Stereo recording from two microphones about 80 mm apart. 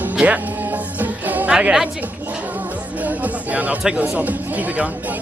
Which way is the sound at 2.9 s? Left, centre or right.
Centre.